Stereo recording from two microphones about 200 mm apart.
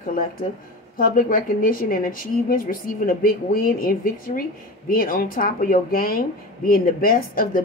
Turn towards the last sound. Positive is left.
turn(degrees=45)  # may be behind; listen again after turning